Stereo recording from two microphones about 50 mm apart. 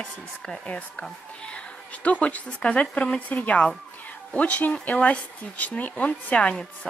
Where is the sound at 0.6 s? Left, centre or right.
Left.